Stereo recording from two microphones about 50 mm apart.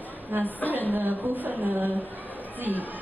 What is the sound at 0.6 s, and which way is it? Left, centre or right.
Speech, left.